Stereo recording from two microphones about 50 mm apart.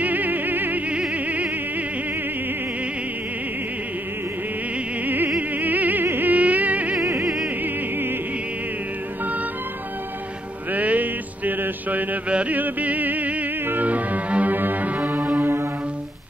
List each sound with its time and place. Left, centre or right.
0.0 s music: right
0.8 s music: right
5.0 s music: right
7.4 s music: right
10.7 s mantra: right
12.4 s music: right